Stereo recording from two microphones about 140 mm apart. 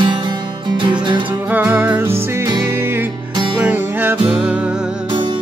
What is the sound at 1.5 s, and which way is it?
Music, 15° right (ahead or behind).